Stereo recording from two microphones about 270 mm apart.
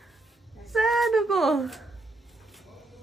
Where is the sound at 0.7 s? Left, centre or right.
Centre.